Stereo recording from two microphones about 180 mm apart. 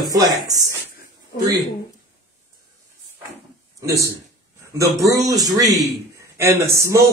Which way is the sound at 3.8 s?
15° right (ahead or behind).